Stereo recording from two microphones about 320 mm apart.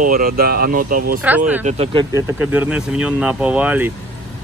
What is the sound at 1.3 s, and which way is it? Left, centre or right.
Speech, centre.